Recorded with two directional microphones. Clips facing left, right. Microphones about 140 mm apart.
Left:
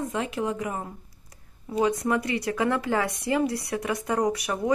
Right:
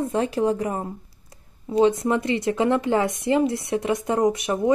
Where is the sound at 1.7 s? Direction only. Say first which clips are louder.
Right 5 dB; 25° right (ahead or behind).